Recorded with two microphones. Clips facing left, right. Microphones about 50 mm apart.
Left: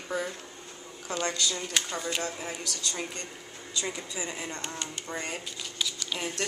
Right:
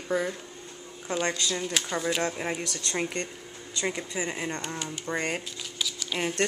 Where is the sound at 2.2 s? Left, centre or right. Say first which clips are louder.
Right 5 dB; right.